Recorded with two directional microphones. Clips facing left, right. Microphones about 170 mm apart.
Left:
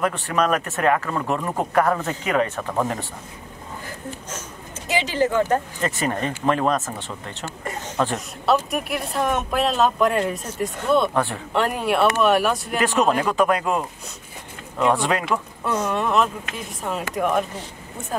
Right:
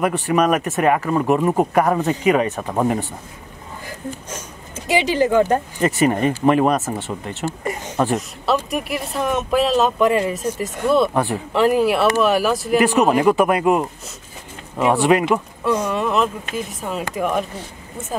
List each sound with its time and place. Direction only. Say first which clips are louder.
0.3 s speech: right 5 dB; 15° right (ahead or behind)
4.8 s speech: right 4 dB; 15° right (ahead or behind)
8.5 s speech: even; centre (ahead or behind)
11.1 s speech: right 3 dB; 15° right (ahead or behind)
11.5 s speech: right 5 dB; centre (ahead or behind)
13.0 s speech: right 4 dB; 15° right (ahead or behind)
15.6 s speech: right 3 dB; centre (ahead or behind)